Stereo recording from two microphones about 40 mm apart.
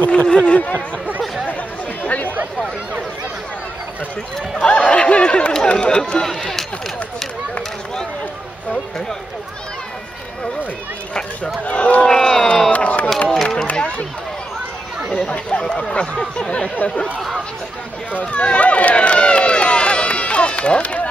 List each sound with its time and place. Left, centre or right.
0.0 s speech: left
0.7 s speech: right
2.0 s chatter: left
4.6 s speech: left
11.6 s run: left
12.1 s a sound: centre
12.7 s a sound: left
13.3 s a sound: centre
13.7 s speech: left
15.1 s speech: left
16.7 s speech: left
18.2 s run: left